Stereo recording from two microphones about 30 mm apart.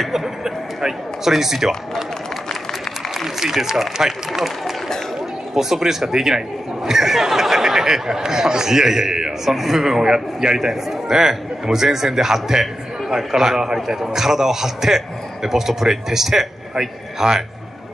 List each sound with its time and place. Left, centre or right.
0.0 s speech: centre
3.3 s speech: centre
5.5 s a man's voice: centre